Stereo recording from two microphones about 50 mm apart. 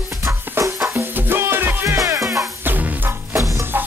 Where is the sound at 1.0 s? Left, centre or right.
Right.